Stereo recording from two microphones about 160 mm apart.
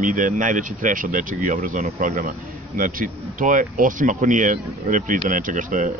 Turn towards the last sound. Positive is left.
turn(degrees=-55)  # may be behind; listen again after turning